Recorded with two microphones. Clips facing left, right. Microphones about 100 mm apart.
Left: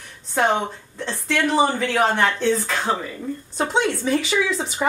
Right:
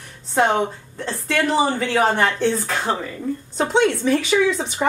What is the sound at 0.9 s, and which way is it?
A woman's voice, centre (ahead or behind).